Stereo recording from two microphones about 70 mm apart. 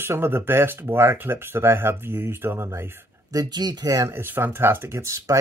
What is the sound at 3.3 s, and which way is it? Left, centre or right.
Speech, right.